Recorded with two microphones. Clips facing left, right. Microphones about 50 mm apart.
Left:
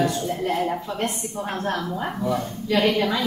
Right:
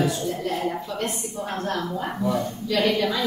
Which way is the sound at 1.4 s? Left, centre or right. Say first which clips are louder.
Left 1 dB; centre.